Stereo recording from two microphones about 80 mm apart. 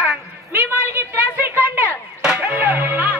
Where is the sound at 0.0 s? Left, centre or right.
Right.